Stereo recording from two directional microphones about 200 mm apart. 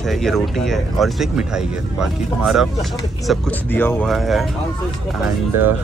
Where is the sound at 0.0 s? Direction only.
Centre (ahead or behind).